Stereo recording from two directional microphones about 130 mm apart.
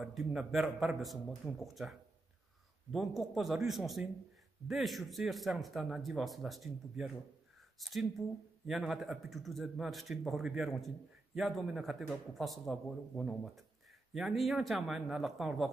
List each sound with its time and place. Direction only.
0.0 s speech: centre (ahead or behind)